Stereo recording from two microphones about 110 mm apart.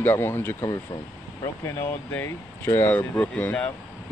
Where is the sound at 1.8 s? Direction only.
15° left (ahead or behind).